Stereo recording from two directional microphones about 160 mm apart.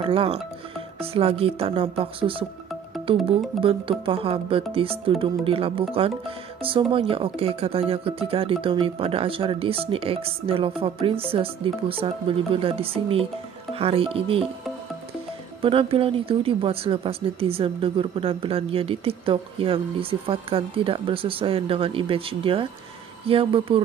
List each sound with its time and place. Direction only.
0.0 s speech: 35° right (ahead or behind)
3.6 s speech: 35° right (ahead or behind)
15.6 s speech: 35° right (ahead or behind)